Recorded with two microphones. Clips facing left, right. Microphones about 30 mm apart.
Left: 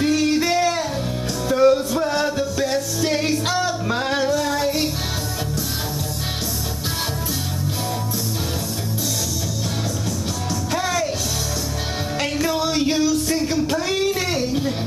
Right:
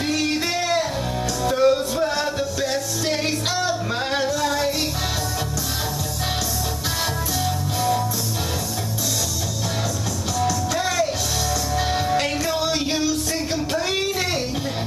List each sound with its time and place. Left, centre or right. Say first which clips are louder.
0.0 s music: left 4 dB; centre
10.8 s music: even; centre
12.4 s music: left 2 dB; centre
14.0 s a sound: left 2 dB; centre